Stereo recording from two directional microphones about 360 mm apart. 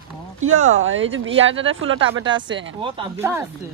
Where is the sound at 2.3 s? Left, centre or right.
Centre.